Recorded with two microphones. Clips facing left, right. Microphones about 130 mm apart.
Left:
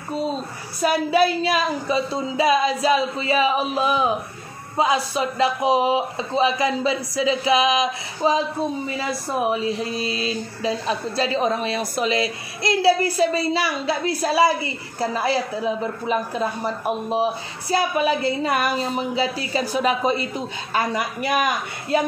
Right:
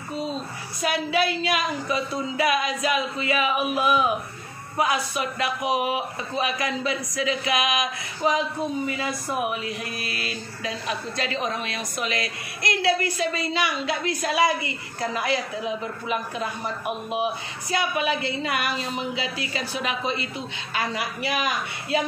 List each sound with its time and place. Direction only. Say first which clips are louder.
0.7 s a woman's voice: left 6 dB; 40° left (ahead or behind)